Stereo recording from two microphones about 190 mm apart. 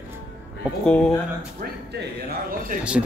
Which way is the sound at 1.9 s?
55° right (ahead or behind).